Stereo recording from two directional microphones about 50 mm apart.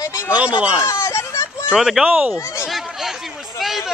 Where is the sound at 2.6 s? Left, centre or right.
Centre.